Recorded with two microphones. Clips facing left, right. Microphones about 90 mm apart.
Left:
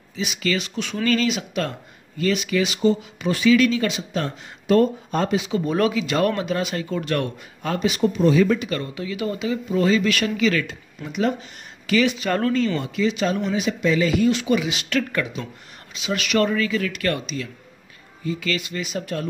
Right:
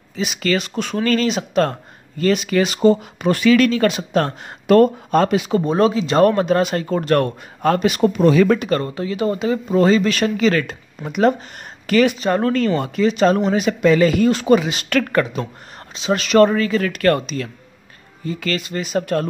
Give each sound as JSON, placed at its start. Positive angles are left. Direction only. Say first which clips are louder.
{"t": 0.1, "sound": "speech", "louder": "right 4 dB", "side_deg": -50}
{"t": 5.6, "sound": "speech", "louder": "right 4 dB", "side_deg": -30}
{"t": 15.0, "sound": "speech", "louder": "right 7 dB", "side_deg": -55}
{"t": 15.9, "sound": "speech", "louder": "right 6 dB", "side_deg": -35}